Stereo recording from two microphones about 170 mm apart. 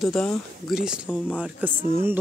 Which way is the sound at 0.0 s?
5° left (ahead or behind).